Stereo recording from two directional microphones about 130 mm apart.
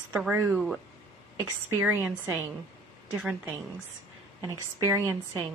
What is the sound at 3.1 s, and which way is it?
Speech, 5° right (ahead or behind).